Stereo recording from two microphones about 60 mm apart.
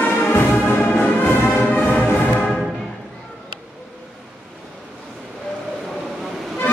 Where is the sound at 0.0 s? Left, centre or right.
Left.